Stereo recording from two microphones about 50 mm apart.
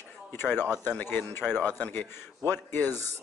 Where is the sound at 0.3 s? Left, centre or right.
Left.